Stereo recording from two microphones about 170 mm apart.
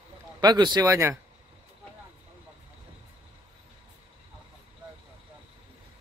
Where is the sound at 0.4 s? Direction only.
25° right (ahead or behind).